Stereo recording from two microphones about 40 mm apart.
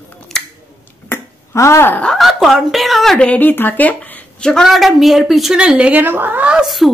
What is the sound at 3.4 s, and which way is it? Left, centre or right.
Speech, left.